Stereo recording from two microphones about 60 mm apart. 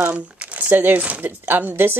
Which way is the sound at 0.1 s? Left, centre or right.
Right.